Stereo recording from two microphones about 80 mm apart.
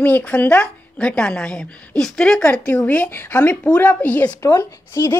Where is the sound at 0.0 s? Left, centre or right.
Left.